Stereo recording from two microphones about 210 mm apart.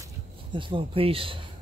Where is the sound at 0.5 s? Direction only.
25° right (ahead or behind).